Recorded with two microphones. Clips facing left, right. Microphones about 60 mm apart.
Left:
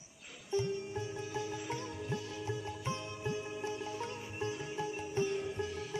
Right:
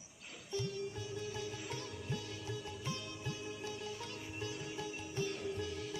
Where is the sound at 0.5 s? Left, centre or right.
Left.